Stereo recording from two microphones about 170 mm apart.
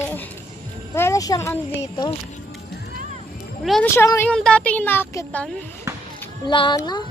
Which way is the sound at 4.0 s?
15° left (ahead or behind).